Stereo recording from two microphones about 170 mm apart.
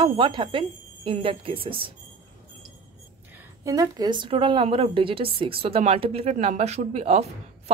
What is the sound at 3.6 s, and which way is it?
Speech, 20° right (ahead or behind).